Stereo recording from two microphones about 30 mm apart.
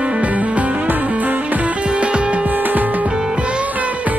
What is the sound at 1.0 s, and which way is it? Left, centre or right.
Music, right.